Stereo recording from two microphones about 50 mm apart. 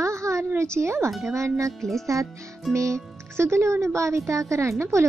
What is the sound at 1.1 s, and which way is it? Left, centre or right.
Speech, centre.